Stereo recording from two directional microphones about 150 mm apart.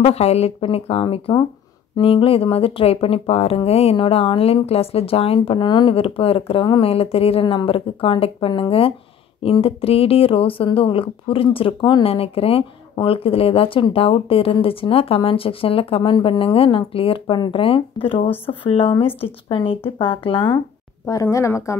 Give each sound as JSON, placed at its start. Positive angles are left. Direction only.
{"t": 0.0, "sound": "speech", "side_deg": 45}
{"t": 21.0, "sound": "a woman's voice", "side_deg": 20}